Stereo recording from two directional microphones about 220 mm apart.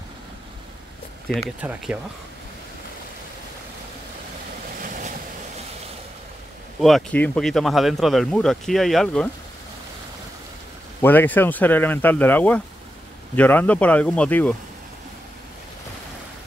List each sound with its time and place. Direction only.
1.3 s speech: 5° right (ahead or behind)
4.8 s waves: 35° right (ahead or behind)
6.8 s speech: centre (ahead or behind)
11.0 s speech: 10° left (ahead or behind)